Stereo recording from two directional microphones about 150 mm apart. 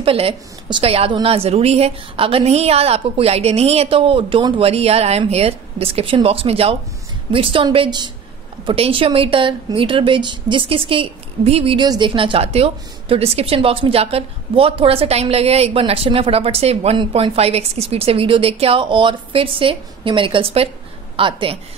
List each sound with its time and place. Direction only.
0.0 s a woman's voice: 40° right (ahead or behind)